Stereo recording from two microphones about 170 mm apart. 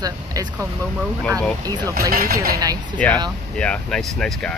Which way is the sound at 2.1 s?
60° right (ahead or behind).